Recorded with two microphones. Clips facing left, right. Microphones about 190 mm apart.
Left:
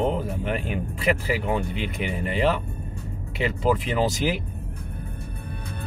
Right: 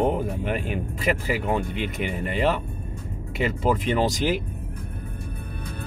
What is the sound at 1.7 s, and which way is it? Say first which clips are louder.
Speech: right 1 dB; 45° right (ahead or behind).